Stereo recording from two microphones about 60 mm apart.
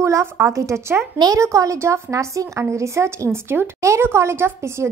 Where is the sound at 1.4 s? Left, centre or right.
Right.